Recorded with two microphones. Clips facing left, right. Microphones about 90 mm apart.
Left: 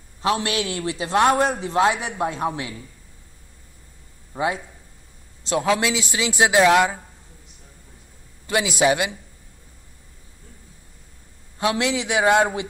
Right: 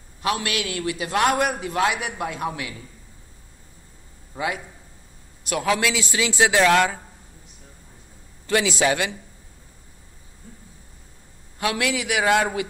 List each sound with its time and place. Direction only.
0.2 s a man's voice: 25° left (ahead or behind)
4.3 s a man's voice: 30° left (ahead or behind)
8.5 s a man's voice: 20° left (ahead or behind)
11.5 s a man's voice: 25° left (ahead or behind)